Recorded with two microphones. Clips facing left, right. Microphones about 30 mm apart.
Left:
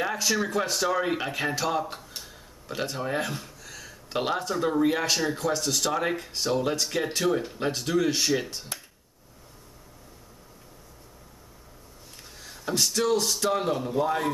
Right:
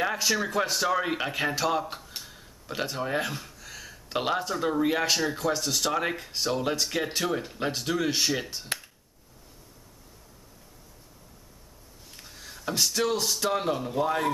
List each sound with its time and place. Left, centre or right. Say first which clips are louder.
0.0 s speech: even; centre
12.2 s speech: even; centre